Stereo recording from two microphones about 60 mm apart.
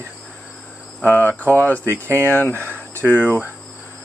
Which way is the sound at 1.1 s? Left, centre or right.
Left.